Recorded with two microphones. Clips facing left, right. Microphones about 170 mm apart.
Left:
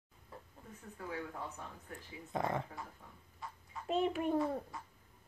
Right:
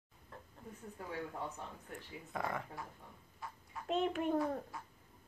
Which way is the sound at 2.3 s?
25° left (ahead or behind).